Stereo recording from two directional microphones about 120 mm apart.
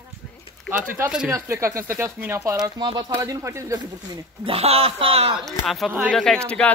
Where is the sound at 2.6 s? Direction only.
40° right (ahead or behind).